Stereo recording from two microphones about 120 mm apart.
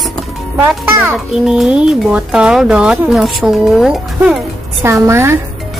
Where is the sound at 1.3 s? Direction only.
5° right (ahead or behind).